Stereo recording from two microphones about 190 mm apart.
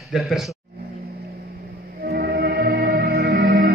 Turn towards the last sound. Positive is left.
turn(degrees=-55)  # may be behind; listen again after turning